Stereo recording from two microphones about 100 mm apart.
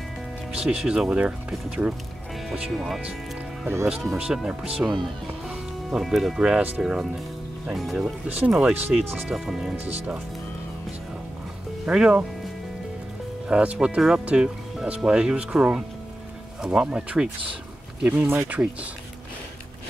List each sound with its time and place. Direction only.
0.6 s speech: 10° right (ahead or behind)
4.2 s speech: 5° right (ahead or behind)
8.3 s speech: 10° right (ahead or behind)
11.8 s speech: 10° right (ahead or behind)
13.5 s speech: 10° right (ahead or behind)
18.0 s speech: 20° right (ahead or behind)